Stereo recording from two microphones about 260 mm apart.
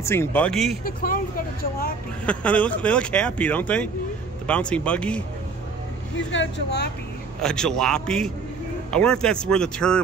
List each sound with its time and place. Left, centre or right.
0.0 s speech: centre
0.8 s speech: left
2.2 s speech: centre
6.1 s speech: left
7.4 s speech: centre